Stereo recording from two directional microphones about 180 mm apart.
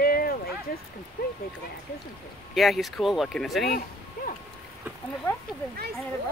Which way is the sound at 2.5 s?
Centre (ahead or behind).